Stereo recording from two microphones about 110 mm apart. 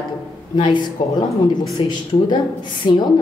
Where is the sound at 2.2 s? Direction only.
45° left (ahead or behind).